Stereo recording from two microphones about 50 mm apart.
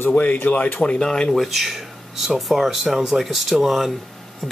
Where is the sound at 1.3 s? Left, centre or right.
Centre.